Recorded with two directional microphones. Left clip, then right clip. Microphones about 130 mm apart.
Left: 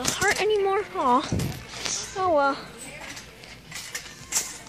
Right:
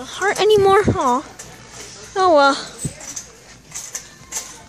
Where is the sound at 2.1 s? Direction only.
60° right (ahead or behind).